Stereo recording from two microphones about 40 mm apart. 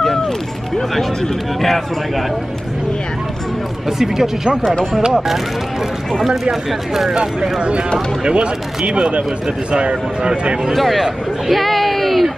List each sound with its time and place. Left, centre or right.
8.2 s speech: right
10.6 s speech: centre